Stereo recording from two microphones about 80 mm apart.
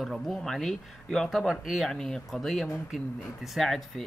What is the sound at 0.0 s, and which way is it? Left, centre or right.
Speech, centre.